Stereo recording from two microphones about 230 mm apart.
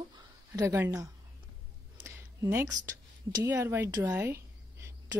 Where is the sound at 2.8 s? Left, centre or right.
Centre.